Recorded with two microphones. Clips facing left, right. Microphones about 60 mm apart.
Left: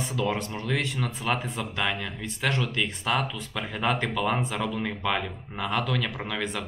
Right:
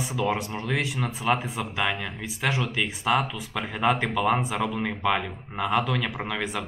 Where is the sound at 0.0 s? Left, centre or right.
Centre.